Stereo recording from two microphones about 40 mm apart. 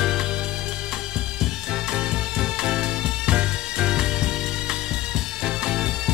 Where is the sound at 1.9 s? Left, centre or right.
Right.